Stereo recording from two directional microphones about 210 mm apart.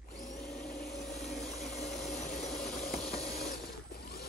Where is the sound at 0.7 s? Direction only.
Centre (ahead or behind).